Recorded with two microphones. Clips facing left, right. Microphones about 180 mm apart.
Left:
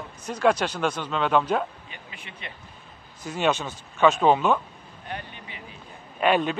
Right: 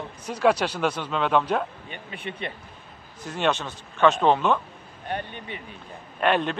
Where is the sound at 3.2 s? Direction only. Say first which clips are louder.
Left 1 dB; 5° left (ahead or behind).